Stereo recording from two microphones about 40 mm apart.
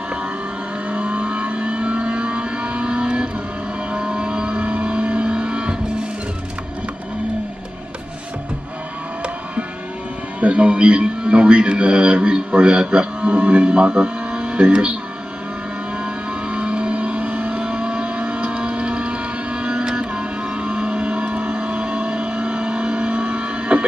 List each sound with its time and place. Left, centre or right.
0.8 s vehicle: right
10.4 s a man's voice: right
16.0 s vehicle: right
17.3 s vehicle: right
17.6 s a sound: right
21.4 s vehicle: right